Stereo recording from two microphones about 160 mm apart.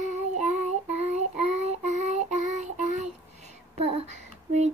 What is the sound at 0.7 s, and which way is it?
Child singing, 45° right (ahead or behind).